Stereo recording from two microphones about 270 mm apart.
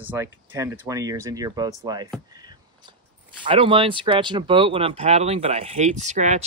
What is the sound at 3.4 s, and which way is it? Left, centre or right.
Speech, centre.